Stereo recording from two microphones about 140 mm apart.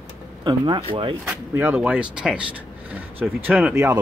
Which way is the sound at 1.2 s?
10° right (ahead or behind).